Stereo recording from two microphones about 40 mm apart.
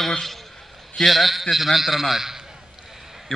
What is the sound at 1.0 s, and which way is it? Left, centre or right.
A man's voice, centre.